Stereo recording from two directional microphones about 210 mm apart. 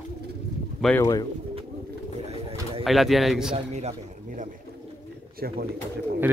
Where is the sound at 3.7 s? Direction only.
35° right (ahead or behind).